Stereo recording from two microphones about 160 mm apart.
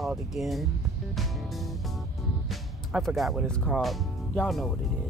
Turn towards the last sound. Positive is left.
turn(degrees=0)  # may be behind; listen again after turning